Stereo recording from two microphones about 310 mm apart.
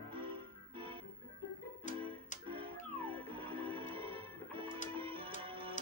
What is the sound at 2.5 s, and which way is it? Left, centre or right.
Music, centre.